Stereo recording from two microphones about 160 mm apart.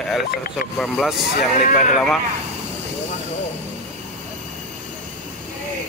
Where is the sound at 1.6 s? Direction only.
55° left (ahead or behind).